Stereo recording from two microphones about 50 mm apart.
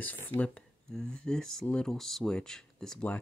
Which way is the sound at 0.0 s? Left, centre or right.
Left.